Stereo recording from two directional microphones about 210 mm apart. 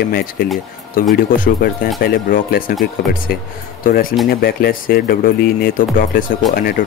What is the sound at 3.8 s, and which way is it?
Speech, 40° left (ahead or behind).